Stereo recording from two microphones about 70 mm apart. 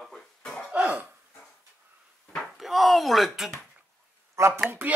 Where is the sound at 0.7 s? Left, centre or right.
Centre.